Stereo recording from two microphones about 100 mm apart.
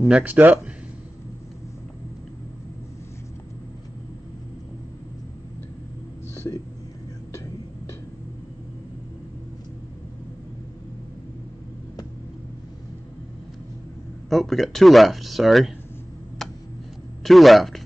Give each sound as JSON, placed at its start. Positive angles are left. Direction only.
{"t": 0.0, "sound": "speech", "side_deg": -10}
{"t": 6.3, "sound": "a sound", "side_deg": 25}
{"t": 14.3, "sound": "speech", "side_deg": 0}
{"t": 16.4, "sound": "tick-tock", "side_deg": 5}
{"t": 17.2, "sound": "speech", "side_deg": 0}